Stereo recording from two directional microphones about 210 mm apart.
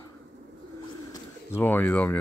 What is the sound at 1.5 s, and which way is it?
Speech, 10° left (ahead or behind).